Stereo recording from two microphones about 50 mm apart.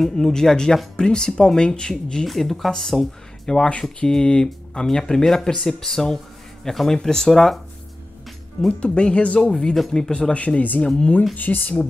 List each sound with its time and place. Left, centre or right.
0.0 s speech: centre
2.2 s speech: centre
3.5 s speech: left; by 7.6 s centre
8.5 s speech: centre
10.3 s speech: left
10.8 s speech: centre
11.3 s speech: left